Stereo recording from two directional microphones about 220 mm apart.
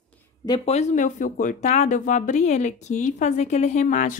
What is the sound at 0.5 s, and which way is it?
A woman's voice, 30° left (ahead or behind).